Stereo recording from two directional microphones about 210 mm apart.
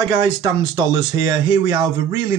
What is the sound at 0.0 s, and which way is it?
Speech, 20° right (ahead or behind).